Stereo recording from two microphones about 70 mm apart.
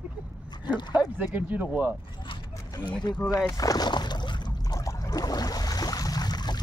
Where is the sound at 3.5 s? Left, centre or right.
Left.